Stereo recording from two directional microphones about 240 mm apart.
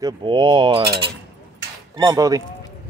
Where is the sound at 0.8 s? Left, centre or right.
Right.